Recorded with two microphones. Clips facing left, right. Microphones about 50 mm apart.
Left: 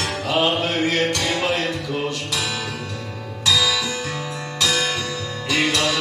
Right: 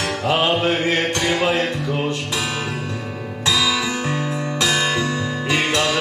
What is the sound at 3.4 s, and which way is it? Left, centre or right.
Music, right.